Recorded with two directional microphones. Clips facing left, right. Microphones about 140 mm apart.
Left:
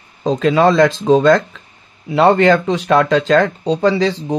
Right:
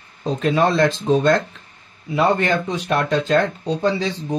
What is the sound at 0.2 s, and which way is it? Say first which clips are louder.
Speech: left 5 dB; 90° left.